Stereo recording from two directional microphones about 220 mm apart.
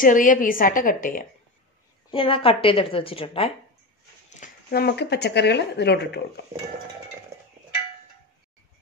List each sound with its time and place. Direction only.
0.0 s a woman's voice: 35° left (ahead or behind)
2.0 s a woman's voice: 25° left (ahead or behind)
4.3 s speech: 40° left (ahead or behind)